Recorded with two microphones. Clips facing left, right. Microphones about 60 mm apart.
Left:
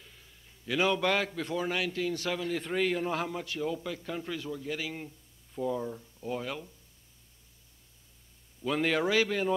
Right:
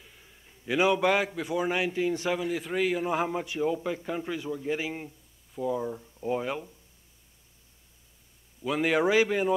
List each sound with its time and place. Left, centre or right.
0.0 s a man's voice: centre
5.5 s speech: centre
8.6 s speech: centre